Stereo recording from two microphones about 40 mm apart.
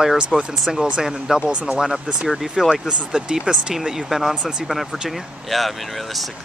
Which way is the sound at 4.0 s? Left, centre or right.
Centre.